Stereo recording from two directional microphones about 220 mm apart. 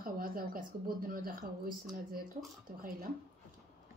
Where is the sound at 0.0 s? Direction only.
40° right (ahead or behind).